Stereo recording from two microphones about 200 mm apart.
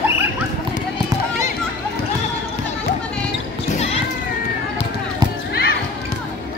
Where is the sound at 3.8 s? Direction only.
30° left (ahead or behind).